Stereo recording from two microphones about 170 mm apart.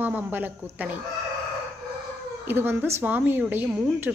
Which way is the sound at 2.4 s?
10° right (ahead or behind).